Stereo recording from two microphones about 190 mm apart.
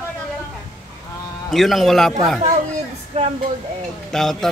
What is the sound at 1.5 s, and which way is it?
Speech, centre (ahead or behind).